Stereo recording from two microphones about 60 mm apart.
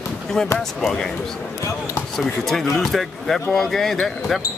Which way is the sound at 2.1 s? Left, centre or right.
Centre.